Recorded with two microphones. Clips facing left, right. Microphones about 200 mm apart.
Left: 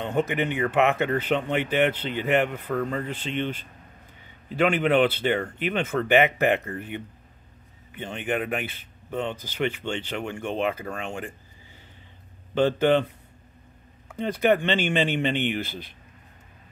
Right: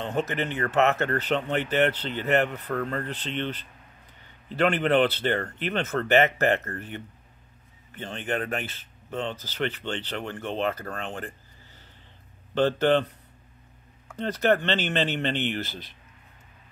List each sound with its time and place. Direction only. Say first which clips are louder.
0.0 s speech: left 3 dB; 15° left (ahead or behind)
12.5 s speech: left 1 dB; 10° left (ahead or behind)